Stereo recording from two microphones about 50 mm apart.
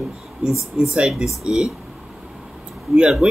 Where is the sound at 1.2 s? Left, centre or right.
Centre.